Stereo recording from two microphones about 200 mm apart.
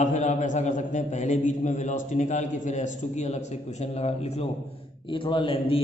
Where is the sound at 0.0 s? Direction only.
35° left (ahead or behind).